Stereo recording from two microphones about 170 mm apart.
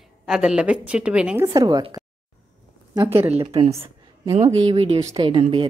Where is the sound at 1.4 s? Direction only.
20° right (ahead or behind).